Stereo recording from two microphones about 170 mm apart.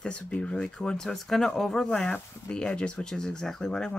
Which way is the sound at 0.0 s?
5° left (ahead or behind).